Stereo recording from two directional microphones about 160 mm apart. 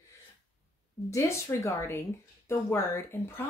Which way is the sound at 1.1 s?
15° left (ahead or behind).